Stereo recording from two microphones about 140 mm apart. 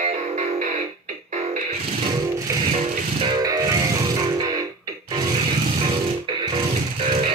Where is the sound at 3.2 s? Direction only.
30° right (ahead or behind).